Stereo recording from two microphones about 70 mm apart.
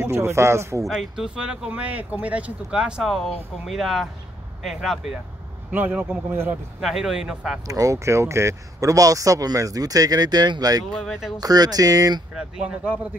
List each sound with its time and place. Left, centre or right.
0.0 s speech: right
0.8 s speech: centre
2.8 s speech: centre
5.7 s a man's voice: centre
6.8 s speech: centre
7.6 s speech: right
11.1 s speech: centre
11.3 s speech: right
12.4 s speech: centre